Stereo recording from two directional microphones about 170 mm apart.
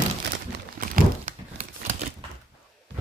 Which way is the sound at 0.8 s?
45° right (ahead or behind).